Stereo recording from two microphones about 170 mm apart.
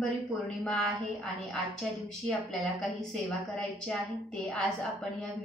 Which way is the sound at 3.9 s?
5° left (ahead or behind).